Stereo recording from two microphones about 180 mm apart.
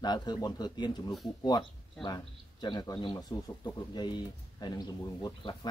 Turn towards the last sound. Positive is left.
turn(degrees=20)  # may be behind; listen again after turning